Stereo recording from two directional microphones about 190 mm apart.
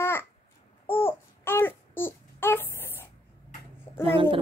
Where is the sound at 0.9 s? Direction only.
10° left (ahead or behind).